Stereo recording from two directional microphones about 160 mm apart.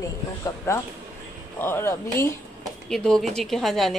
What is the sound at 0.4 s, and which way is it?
Speech, 20° left (ahead or behind).